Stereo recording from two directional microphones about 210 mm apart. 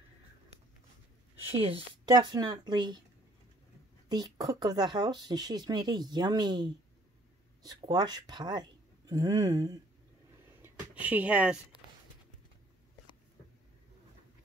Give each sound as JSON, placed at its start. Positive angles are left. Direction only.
{"t": 1.5, "sound": "speech", "side_deg": -25}
{"t": 4.1, "sound": "speech", "side_deg": -20}
{"t": 10.6, "sound": "a sound", "side_deg": -10}